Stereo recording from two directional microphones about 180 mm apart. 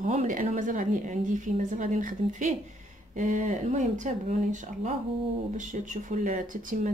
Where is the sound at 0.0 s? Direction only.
45° right (ahead or behind).